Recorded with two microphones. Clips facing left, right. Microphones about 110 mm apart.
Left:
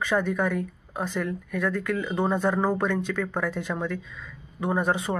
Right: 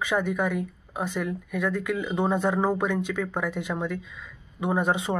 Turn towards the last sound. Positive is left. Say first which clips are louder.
# even
turn(degrees=-20)  # may be behind; listen again after turning